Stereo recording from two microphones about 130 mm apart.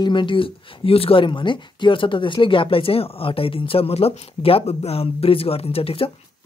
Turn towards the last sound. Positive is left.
turn(degrees=45)  # may be behind; listen again after turning